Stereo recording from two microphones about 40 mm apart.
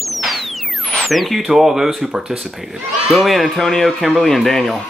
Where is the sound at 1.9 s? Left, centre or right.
Centre.